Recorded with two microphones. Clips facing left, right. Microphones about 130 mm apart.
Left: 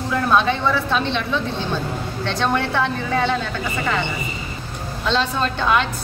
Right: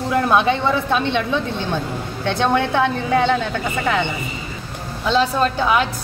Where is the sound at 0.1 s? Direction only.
15° right (ahead or behind).